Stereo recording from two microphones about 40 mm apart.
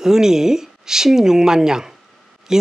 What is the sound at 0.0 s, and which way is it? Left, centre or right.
Speech, centre.